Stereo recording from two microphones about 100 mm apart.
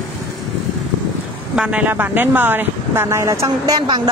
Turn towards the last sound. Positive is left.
turn(degrees=-30)  # may be behind; listen again after turning